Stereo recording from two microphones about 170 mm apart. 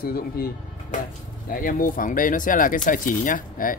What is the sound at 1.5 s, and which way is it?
Speech, 55° left (ahead or behind).